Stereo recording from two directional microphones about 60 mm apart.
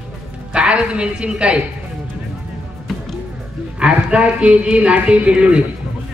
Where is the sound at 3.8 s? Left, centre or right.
Centre.